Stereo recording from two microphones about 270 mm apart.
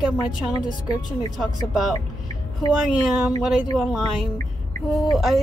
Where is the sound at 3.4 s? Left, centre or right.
Centre.